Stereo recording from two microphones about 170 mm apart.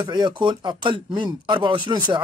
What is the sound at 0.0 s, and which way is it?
Speech, 25° right (ahead or behind).